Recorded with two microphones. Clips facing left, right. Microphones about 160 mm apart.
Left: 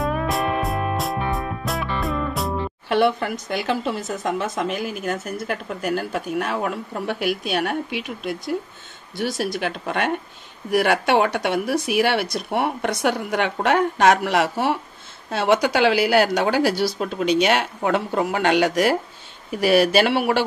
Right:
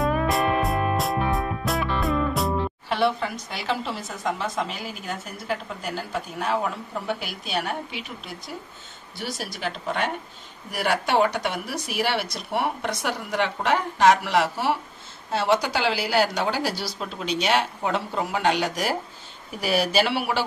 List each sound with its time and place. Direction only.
0.0 s music: centre (ahead or behind)
2.9 s speech: 55° left (ahead or behind)